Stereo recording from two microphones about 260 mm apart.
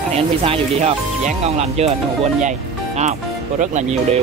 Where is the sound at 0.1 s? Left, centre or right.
Right.